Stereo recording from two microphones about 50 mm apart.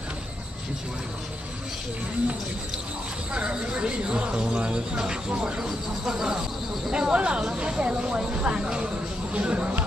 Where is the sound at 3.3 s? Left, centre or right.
Centre.